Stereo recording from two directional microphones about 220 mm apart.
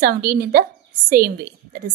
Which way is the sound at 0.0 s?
45° right (ahead or behind).